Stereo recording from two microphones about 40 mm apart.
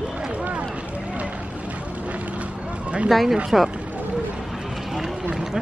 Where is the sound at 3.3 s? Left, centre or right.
Centre.